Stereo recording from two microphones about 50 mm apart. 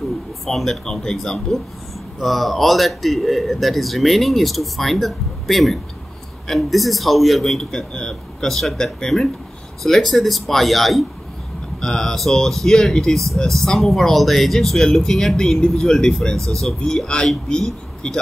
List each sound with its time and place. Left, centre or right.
0.5 s a man's voice: centre
11.8 s speech: centre
16.3 s speech: right
16.8 s speech: centre